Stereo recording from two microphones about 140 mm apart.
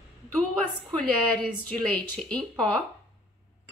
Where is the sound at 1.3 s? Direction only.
5° left (ahead or behind).